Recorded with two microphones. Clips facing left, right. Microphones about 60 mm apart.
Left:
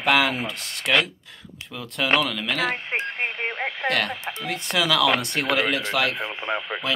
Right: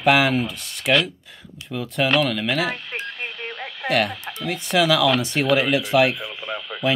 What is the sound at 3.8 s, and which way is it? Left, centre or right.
Speech, centre.